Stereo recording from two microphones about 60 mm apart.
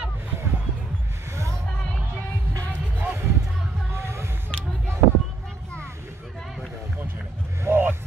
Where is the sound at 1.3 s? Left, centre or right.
Right.